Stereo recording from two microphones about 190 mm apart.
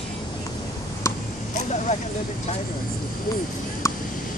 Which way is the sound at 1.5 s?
40° left (ahead or behind).